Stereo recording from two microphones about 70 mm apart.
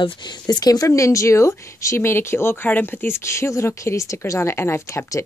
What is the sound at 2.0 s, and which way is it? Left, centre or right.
Speech, left.